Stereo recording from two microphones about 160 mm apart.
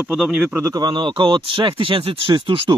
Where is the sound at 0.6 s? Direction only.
25° right (ahead or behind).